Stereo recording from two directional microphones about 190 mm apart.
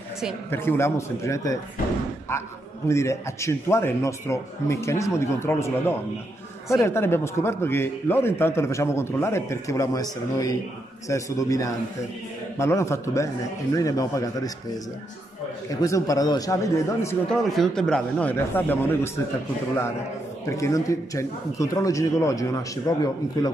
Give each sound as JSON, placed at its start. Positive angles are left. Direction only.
{"t": 0.5, "sound": "a man's voice", "side_deg": 10}
{"t": 2.9, "sound": "a man's voice", "side_deg": 15}
{"t": 17.3, "sound": "a man's voice", "side_deg": 0}
{"t": 20.4, "sound": "a man's voice", "side_deg": 15}